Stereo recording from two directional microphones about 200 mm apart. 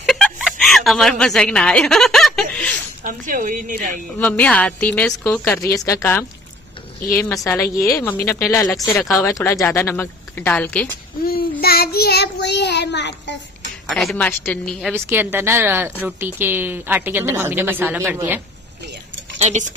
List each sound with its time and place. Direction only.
0.0 s a sound: centre (ahead or behind)
3.1 s a woman's voice: 40° right (ahead or behind)
4.2 s a woman's voice: 5° left (ahead or behind)
11.6 s child singing: 50° left (ahead or behind)
13.9 s a woman's voice: 5° left (ahead or behind)
15.0 s a woman's voice: 10° right (ahead or behind)
19.3 s speech: 35° right (ahead or behind)